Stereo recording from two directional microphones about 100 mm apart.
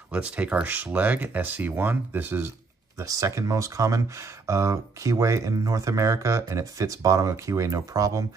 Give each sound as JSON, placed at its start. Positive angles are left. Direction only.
{"t": 0.1, "sound": "speech", "side_deg": -10}
{"t": 3.0, "sound": "speech", "side_deg": -35}